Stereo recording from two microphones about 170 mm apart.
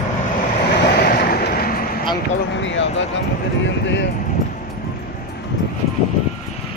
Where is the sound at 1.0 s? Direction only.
65° left (ahead or behind).